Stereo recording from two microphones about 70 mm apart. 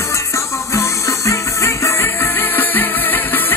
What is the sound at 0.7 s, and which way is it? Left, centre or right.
Music, left.